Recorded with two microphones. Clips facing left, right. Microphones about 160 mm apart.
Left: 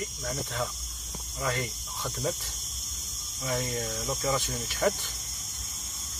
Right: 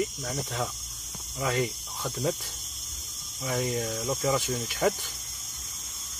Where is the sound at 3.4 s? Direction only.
10° right (ahead or behind).